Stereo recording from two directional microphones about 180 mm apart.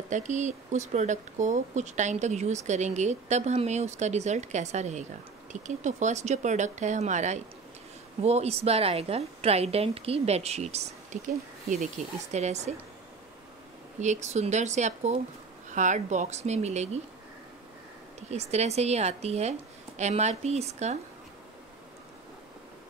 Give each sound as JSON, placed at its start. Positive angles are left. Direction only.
{"t": 0.1, "sound": "speech", "side_deg": -40}
{"t": 13.9, "sound": "speech", "side_deg": -40}
{"t": 18.3, "sound": "speech", "side_deg": -40}